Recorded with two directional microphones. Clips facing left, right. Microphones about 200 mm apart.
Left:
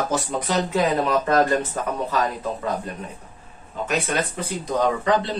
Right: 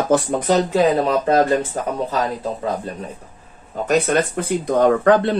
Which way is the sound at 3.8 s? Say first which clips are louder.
Right 7 dB; 50° right (ahead or behind).